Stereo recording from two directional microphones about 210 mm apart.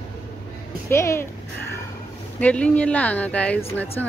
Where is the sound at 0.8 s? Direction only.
10° left (ahead or behind).